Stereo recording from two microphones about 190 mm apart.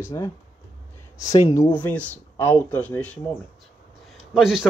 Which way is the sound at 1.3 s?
15° left (ahead or behind).